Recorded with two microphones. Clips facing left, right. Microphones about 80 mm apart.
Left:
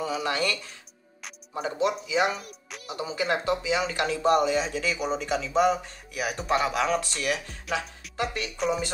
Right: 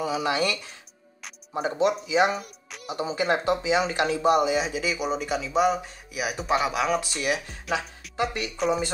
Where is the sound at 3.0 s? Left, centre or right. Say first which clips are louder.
Right 3 dB; right.